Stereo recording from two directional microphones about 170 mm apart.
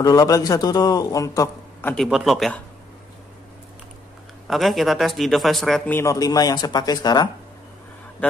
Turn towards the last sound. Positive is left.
turn(degrees=25)  # may be behind; listen again after turning